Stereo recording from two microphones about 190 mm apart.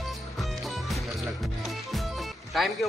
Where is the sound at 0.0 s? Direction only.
Centre (ahead or behind).